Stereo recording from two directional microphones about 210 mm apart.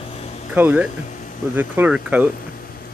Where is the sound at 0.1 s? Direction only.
30° left (ahead or behind).